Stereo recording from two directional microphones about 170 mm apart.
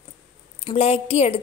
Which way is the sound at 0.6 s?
35° left (ahead or behind).